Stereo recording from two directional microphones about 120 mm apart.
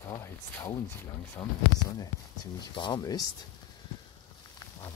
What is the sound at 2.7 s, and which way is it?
Speech, 40° left (ahead or behind).